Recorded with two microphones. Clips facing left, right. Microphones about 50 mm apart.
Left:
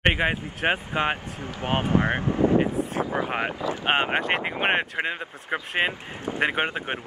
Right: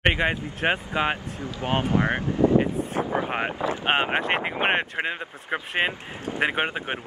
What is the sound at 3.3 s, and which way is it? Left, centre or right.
Speech, centre.